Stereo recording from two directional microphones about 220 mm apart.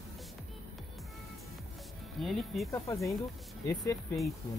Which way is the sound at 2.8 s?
15° left (ahead or behind).